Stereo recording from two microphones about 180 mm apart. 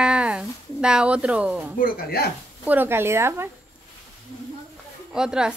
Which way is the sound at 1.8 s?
55° left (ahead or behind).